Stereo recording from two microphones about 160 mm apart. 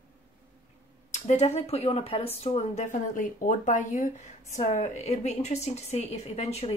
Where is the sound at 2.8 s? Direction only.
55° left (ahead or behind).